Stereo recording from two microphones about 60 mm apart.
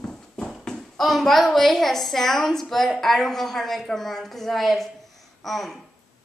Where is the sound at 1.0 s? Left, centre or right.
Centre.